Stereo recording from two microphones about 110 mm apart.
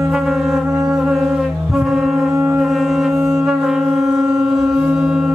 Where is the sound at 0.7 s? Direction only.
25° right (ahead or behind).